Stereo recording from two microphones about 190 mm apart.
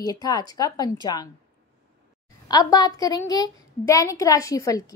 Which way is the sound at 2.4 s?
20° left (ahead or behind).